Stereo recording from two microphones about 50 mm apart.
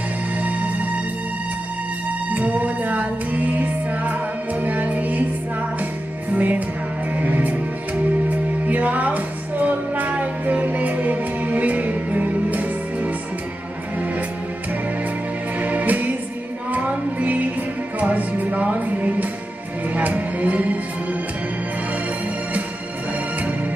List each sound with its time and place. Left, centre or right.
0.4 s music: right
2.3 s music: right
6.3 s music: right
15.6 s music: right